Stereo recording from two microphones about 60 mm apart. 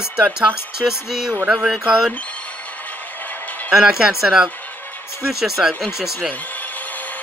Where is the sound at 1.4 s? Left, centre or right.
Right.